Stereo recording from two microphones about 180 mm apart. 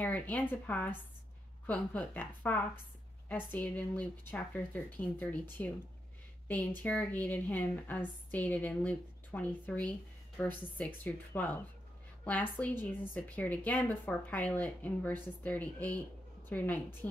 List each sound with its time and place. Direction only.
0.0 s a woman's voice: 10° left (ahead or behind)